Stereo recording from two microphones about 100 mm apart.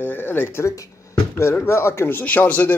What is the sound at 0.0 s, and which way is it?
A man's voice, 20° left (ahead or behind).